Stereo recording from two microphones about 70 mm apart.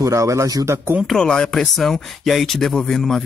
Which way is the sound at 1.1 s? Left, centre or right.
Centre.